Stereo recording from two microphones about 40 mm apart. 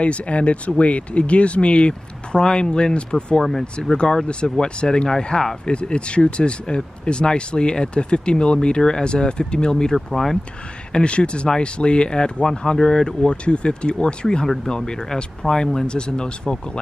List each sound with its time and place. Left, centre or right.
0.0 s speech: left; by 5.6 s centre
5.7 s speech: left
9.9 s speech: centre
10.9 s speech: left